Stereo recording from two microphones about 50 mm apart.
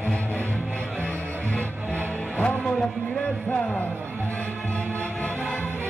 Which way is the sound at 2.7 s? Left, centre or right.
Centre.